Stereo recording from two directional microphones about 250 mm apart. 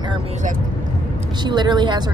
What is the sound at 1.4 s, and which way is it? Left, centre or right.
Speech, centre.